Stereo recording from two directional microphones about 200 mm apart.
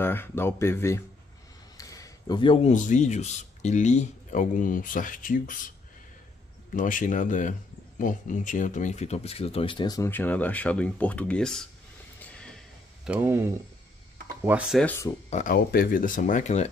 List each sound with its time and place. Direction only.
0.0 s speech: 10° left (ahead or behind); by 5.7 s 40° left (ahead or behind)
6.7 s speech: 40° left (ahead or behind); by 11.6 s 5° left (ahead or behind)
12.2 s a sound: 5° left (ahead or behind)
13.0 s speech: 5° right (ahead or behind)
14.8 s speech: 10° left (ahead or behind)
15.2 s speech: 40° left (ahead or behind)